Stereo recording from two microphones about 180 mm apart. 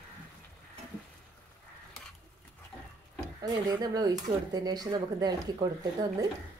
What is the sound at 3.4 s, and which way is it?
Speech, 20° right (ahead or behind).